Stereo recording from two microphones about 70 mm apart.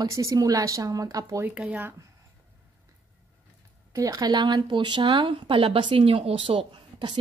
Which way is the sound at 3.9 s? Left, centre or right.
Right.